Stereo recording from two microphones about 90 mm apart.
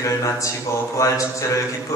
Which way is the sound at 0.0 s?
35° left (ahead or behind).